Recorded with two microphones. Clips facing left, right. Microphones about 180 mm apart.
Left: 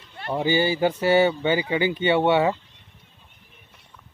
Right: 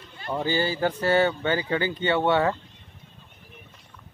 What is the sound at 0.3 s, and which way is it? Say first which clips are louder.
Speech: left 4 dB; 10° left (ahead or behind).